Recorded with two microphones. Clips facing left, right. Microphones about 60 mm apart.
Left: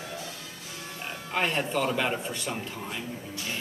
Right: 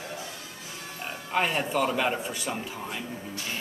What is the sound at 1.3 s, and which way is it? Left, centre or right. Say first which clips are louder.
Speech: right 1 dB; centre.